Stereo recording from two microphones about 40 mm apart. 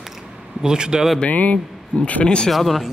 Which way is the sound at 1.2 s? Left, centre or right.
Left.